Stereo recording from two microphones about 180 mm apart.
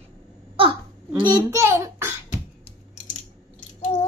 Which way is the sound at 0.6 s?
30° right (ahead or behind).